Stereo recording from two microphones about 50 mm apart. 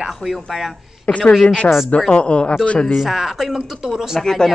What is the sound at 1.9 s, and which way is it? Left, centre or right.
A woman's voice, left.